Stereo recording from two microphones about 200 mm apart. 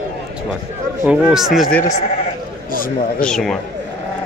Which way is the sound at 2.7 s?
45° left (ahead or behind).